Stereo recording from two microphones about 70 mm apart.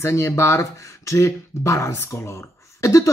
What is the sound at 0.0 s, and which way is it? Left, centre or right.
Speech, left.